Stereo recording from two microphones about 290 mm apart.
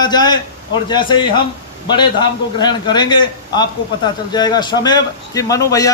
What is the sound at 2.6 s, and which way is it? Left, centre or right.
A man's voice, centre.